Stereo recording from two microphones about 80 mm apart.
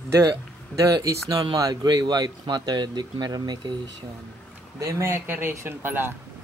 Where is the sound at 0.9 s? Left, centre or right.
Right.